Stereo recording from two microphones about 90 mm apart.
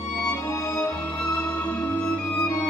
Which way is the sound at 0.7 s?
15° left (ahead or behind).